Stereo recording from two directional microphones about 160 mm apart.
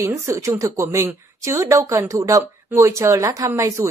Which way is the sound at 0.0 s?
20° right (ahead or behind).